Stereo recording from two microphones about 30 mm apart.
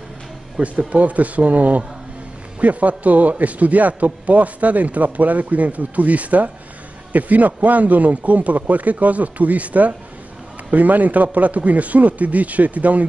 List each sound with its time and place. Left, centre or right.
0.6 s a man's voice: right